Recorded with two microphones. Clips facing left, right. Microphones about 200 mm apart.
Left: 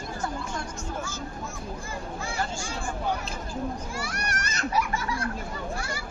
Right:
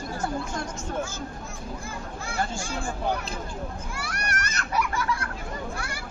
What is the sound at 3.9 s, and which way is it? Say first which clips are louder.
A child's voice: even; 60° right (ahead or behind).